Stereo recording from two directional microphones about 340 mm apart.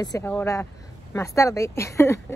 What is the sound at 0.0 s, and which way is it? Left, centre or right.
A woman's voice, centre.